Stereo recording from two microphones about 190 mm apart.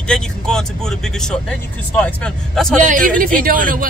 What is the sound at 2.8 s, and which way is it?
Speech, 45° right (ahead or behind).